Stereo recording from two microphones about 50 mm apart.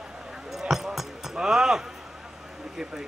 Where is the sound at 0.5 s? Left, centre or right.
Centre.